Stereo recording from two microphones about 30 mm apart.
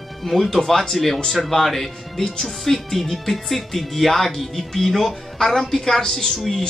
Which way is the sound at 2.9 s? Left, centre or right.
Centre.